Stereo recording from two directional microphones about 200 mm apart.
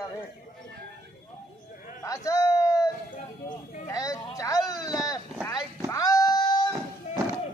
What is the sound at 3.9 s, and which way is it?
Speech, 15° left (ahead or behind).